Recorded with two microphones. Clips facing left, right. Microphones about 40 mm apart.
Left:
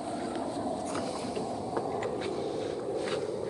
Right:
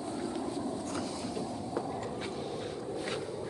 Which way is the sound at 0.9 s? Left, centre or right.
Centre.